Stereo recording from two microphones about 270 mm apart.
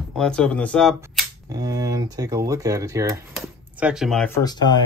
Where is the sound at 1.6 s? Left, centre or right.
Centre.